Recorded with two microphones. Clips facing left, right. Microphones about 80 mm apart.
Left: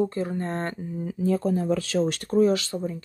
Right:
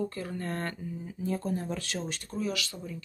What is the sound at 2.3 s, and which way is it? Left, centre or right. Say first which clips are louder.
Speech: left 13 dB; left.